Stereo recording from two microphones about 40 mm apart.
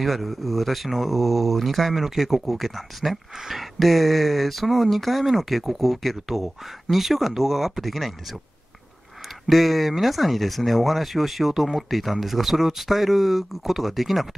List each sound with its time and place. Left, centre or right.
0.0 s speech: centre
9.5 s speech: centre